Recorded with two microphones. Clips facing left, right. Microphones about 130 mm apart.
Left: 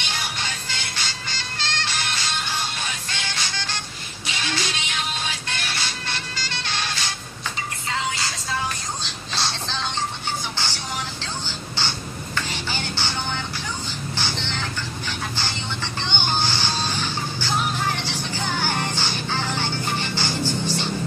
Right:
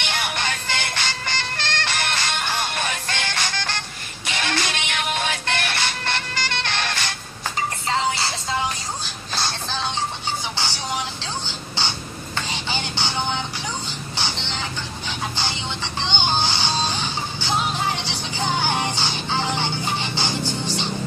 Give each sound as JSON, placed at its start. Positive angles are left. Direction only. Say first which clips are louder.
{"t": 0.0, "sound": "music", "louder": "right 4 dB", "side_deg": -60}
{"t": 7.9, "sound": "music", "louder": "right 4 dB", "side_deg": -30}
{"t": 9.3, "sound": "a sound", "louder": "right 1 dB", "side_deg": 0}
{"t": 10.6, "sound": "vehicle", "louder": "right 3 dB", "side_deg": -15}
{"t": 12.4, "sound": "music", "louder": "right 2 dB", "side_deg": -15}
{"t": 14.1, "sound": "vehicle", "louder": "right 1 dB", "side_deg": -15}
{"t": 18.3, "sound": "music", "louder": "right 4 dB", "side_deg": -15}
{"t": 20.4, "sound": "music", "louder": "left 1 dB", "side_deg": 10}